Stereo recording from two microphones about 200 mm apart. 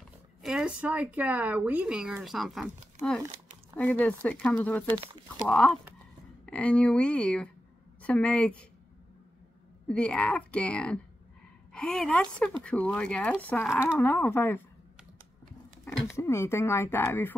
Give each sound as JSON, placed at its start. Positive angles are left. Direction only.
{"t": 0.4, "sound": "speech", "side_deg": -5}
{"t": 3.0, "sound": "speech", "side_deg": -35}
{"t": 3.7, "sound": "speech", "side_deg": 5}
{"t": 9.8, "sound": "speech", "side_deg": 5}
{"t": 15.8, "sound": "speech", "side_deg": 10}